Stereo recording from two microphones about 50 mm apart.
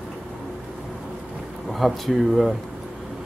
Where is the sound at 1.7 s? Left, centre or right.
Centre.